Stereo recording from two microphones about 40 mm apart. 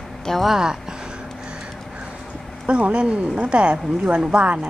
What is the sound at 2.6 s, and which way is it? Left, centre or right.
A woman's voice, right.